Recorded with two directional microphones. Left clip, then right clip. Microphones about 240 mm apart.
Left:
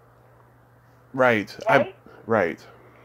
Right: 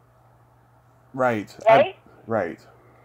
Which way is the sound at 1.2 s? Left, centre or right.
Centre.